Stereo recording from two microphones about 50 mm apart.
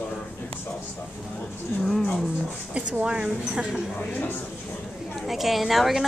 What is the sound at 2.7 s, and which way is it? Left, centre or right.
Speech, centre.